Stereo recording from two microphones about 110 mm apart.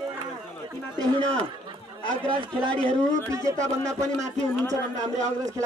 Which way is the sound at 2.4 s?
45° right (ahead or behind).